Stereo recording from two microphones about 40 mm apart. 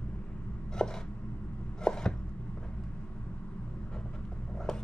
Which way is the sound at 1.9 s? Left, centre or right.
Centre.